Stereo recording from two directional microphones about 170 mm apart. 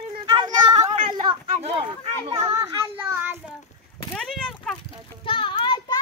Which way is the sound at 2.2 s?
35° right (ahead or behind).